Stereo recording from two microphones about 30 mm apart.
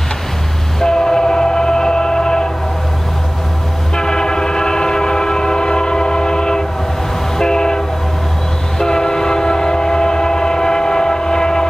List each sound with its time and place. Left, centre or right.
0.7 s train: centre
3.9 s train: left